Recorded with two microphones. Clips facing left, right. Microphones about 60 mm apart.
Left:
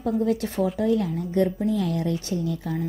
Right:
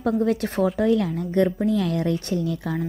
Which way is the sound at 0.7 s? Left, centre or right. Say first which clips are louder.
Right 2 dB; right.